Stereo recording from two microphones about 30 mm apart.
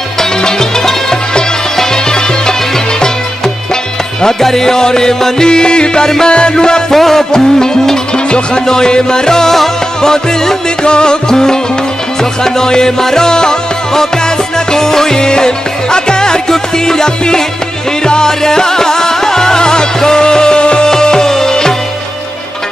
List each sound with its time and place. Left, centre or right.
0.2 s music: centre
4.2 s music: centre
6.9 s music: centre
10.8 s music: left
20.9 s music: left